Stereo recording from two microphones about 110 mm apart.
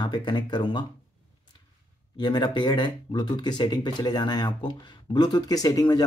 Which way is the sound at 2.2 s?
45° left (ahead or behind).